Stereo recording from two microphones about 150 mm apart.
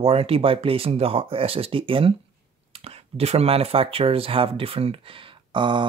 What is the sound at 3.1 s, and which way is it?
Speech, 40° right (ahead or behind).